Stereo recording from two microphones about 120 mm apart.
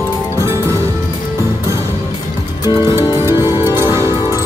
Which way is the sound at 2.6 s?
40° left (ahead or behind).